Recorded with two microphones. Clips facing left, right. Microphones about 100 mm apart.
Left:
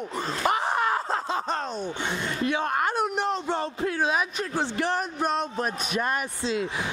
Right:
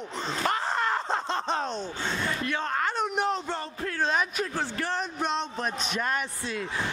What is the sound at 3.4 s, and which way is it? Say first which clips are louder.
Music: left 5 dB; 15° left (ahead or behind).